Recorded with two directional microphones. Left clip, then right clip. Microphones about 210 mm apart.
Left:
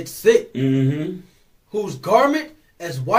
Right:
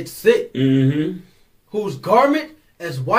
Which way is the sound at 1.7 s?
20° left (ahead or behind).